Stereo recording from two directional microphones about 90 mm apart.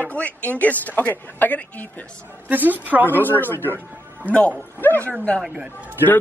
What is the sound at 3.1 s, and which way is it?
A man's voice, 20° left (ahead or behind).